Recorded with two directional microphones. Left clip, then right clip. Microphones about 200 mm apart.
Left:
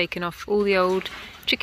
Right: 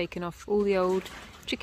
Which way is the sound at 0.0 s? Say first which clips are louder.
Left 7 dB; 5° right (ahead or behind).